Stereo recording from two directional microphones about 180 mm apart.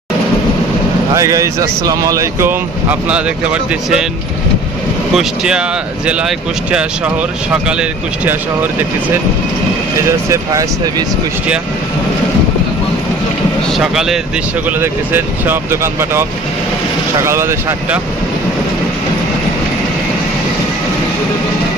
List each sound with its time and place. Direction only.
1.1 s speech: 15° right (ahead or behind)
5.1 s speech: 5° right (ahead or behind)
10.3 s speech: 20° right (ahead or behind)
13.7 s speech: centre (ahead or behind)
14.8 s speech: 10° right (ahead or behind)